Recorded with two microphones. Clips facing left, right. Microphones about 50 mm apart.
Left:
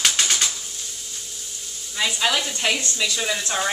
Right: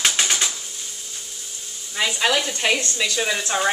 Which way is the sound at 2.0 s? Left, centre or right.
Centre.